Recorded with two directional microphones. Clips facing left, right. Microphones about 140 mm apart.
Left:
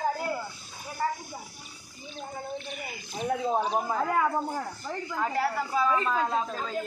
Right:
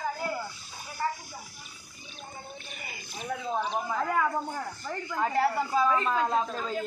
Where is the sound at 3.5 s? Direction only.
35° left (ahead or behind).